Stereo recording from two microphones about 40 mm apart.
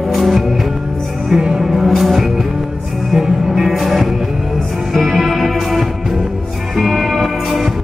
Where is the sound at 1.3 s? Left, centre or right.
Centre.